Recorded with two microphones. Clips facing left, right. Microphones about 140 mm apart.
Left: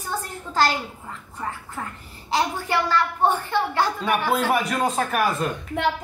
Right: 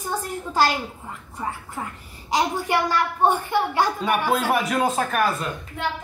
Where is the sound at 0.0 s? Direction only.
15° right (ahead or behind).